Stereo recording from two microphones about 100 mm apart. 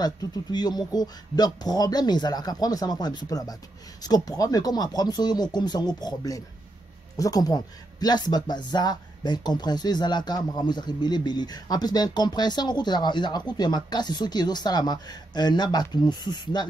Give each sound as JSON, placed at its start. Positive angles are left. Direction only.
{"t": 0.0, "sound": "speech", "side_deg": 40}